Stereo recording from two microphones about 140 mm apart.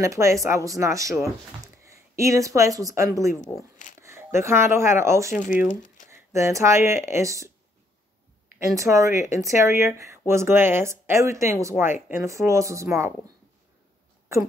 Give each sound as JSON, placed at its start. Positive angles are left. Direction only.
{"t": 0.0, "sound": "speech", "side_deg": -20}
{"t": 3.5, "sound": "speech", "side_deg": -5}
{"t": 4.0, "sound": "speech", "side_deg": -20}
{"t": 5.3, "sound": "speech", "side_deg": 70}
{"t": 6.0, "sound": "speech", "side_deg": -20}
{"t": 8.5, "sound": "speech", "side_deg": -20}